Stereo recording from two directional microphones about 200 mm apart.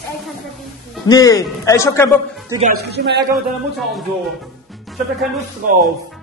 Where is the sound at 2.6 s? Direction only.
50° right (ahead or behind).